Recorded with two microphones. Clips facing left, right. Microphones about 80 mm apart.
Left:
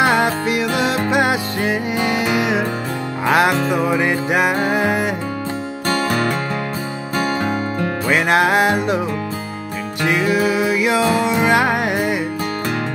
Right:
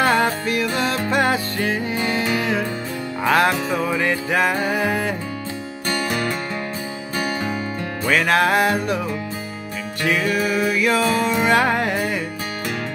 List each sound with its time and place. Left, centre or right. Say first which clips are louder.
0.0 s music: left 2 dB; centre
8.1 s music: left 1 dB; centre
10.0 s music: left 3 dB; centre